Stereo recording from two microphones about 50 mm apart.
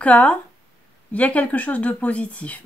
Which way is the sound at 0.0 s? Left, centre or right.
Left.